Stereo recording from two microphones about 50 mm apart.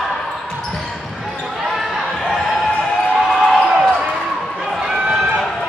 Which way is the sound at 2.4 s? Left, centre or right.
Centre.